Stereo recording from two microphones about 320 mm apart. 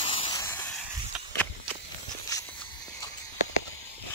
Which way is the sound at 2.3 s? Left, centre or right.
Centre.